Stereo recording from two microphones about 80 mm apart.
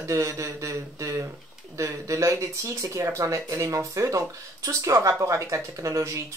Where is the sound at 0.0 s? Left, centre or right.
Right.